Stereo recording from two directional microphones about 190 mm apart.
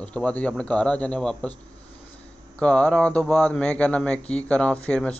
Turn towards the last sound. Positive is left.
turn(degrees=5)  # may be behind; listen again after turning